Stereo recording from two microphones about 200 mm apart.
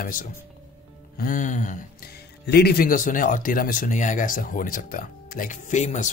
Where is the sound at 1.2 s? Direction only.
40° left (ahead or behind).